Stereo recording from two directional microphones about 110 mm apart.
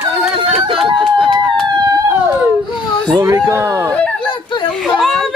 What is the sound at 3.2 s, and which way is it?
Speech, 25° right (ahead or behind).